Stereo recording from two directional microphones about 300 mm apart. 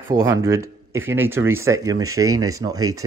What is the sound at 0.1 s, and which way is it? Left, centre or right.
Speech, centre.